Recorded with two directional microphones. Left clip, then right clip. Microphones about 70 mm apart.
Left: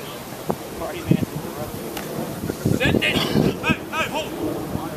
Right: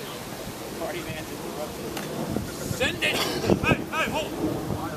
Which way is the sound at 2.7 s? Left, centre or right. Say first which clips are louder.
Left 4 dB; right.